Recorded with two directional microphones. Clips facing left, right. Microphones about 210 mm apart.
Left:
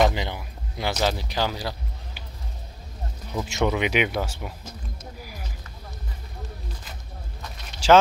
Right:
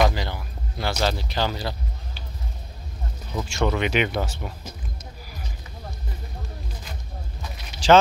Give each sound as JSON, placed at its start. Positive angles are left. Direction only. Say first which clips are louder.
{"t": 0.1, "sound": "a sound", "louder": "even", "side_deg": 20}
{"t": 1.0, "sound": "speech", "louder": "even", "side_deg": 10}
{"t": 3.4, "sound": "speech", "louder": "even", "side_deg": 15}
{"t": 7.8, "sound": "speech", "louder": "even", "side_deg": 10}